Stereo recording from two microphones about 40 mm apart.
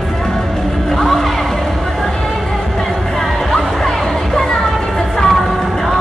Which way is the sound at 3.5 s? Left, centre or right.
Centre.